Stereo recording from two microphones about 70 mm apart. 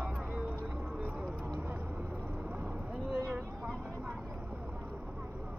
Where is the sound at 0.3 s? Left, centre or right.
Centre.